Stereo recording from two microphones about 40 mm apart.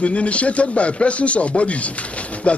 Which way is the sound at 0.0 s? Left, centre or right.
Left.